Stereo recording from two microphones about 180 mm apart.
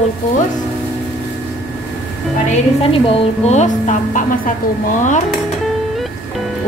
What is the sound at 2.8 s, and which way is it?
A woman's voice, 30° left (ahead or behind).